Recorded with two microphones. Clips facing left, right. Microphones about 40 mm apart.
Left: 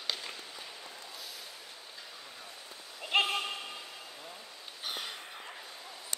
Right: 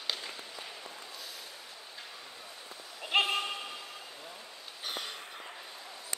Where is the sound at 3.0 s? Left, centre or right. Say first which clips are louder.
Right 1 dB; centre.